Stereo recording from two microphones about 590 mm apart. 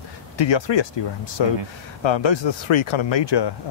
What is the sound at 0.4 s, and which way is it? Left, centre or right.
Speech, left.